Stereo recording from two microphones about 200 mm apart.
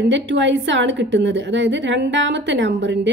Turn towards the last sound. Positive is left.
turn(degrees=-65)  # may be behind; listen again after turning